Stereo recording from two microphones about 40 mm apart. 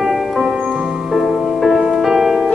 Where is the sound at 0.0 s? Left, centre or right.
Centre.